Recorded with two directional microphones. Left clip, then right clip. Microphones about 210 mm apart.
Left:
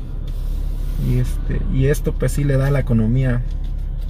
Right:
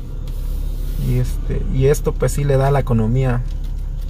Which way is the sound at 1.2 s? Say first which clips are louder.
Right 2 dB; 10° right (ahead or behind).